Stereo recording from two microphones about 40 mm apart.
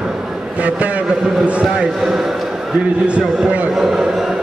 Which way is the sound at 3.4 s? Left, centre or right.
Right.